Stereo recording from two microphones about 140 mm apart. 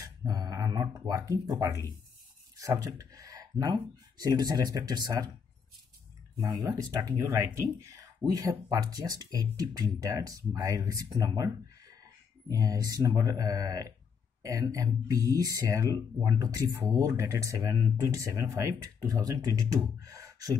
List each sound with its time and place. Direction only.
0.3 s speech: 25° right (ahead or behind)
6.4 s speech: 25° right (ahead or behind)